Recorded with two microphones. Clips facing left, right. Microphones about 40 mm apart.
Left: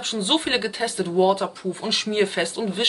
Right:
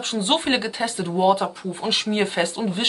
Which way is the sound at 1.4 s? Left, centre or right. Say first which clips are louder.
Right 1 dB; right.